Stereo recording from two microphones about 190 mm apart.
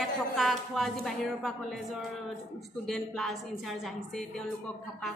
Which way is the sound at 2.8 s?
Centre (ahead or behind).